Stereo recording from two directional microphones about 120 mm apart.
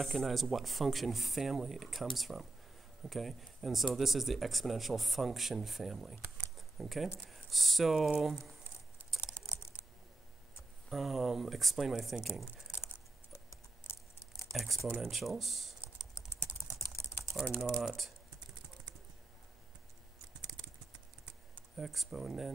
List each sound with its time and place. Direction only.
0.0 s speech: centre (ahead or behind)
10.9 s speech: centre (ahead or behind)
14.5 s speech: centre (ahead or behind)
17.2 s typing: centre (ahead or behind)
17.5 s speech: centre (ahead or behind)
21.7 s speech: centre (ahead or behind)